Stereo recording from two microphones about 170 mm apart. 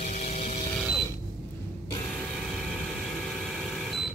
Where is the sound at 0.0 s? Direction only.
45° left (ahead or behind).